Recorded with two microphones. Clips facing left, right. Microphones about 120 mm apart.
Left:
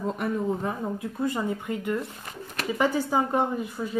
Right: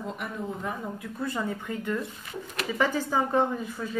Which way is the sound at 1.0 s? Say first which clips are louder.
Left 2 dB; 20° left (ahead or behind).